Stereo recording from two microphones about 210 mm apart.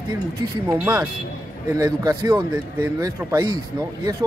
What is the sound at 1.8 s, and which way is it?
Speech, 20° right (ahead or behind).